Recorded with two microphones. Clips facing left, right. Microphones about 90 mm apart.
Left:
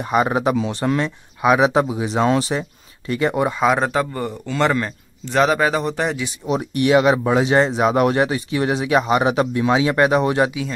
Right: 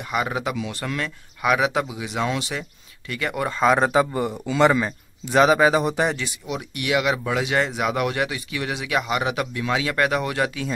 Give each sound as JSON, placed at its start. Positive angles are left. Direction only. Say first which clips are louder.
{"t": 0.0, "sound": "speech", "louder": "left 7 dB", "side_deg": 35}
{"t": 3.4, "sound": "speech", "louder": "left 1 dB", "side_deg": 5}
{"t": 6.4, "sound": "speech", "louder": "left 12 dB", "side_deg": 35}